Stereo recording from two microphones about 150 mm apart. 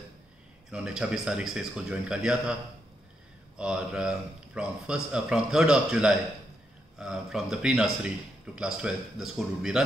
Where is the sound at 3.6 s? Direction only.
5° right (ahead or behind).